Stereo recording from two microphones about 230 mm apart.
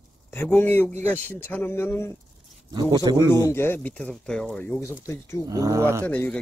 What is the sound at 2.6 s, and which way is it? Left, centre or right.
Speech, centre.